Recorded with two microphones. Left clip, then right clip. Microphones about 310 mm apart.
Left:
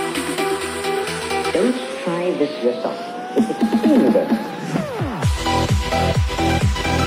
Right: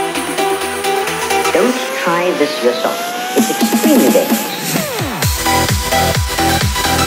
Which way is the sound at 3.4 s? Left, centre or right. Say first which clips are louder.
Right 4 dB; right.